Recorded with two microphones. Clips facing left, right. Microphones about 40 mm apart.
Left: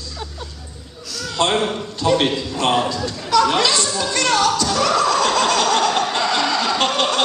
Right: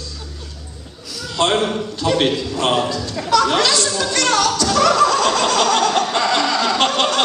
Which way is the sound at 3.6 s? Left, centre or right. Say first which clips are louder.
Right 1 dB; centre.